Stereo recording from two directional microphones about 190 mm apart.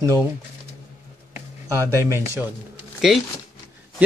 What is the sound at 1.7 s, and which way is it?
Speech, 15° right (ahead or behind).